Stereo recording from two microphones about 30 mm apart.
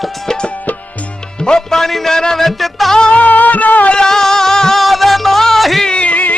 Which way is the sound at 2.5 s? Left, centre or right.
Centre.